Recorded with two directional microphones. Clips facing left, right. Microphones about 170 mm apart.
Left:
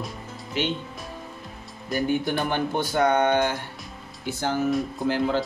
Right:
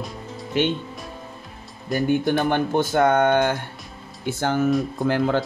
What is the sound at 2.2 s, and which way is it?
Speech, 50° right (ahead or behind).